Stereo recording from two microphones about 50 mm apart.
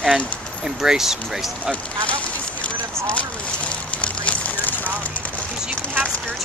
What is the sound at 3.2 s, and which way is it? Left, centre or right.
Fire, left.